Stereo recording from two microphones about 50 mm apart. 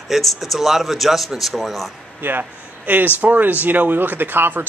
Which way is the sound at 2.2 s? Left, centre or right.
Right.